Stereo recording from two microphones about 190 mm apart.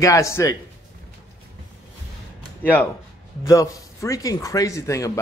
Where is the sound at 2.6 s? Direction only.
10° left (ahead or behind).